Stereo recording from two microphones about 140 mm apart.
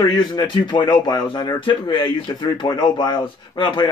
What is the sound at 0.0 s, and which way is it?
Speech, 30° left (ahead or behind).